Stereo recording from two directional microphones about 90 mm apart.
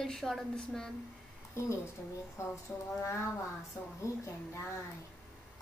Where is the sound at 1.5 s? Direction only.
30° left (ahead or behind).